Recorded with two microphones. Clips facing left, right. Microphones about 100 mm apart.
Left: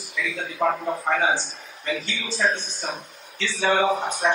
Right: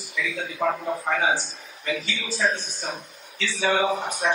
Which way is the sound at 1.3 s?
35° left (ahead or behind).